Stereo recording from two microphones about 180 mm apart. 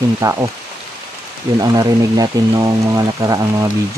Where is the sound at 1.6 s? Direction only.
20° right (ahead or behind).